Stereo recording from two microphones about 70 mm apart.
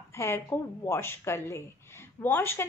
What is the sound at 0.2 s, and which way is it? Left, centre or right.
A woman's voice, left.